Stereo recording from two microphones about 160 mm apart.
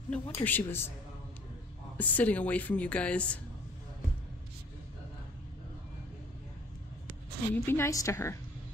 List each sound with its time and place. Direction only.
0.1 s speech: 10° left (ahead or behind)
2.0 s speech: 10° left (ahead or behind)
7.5 s speech: 15° left (ahead or behind)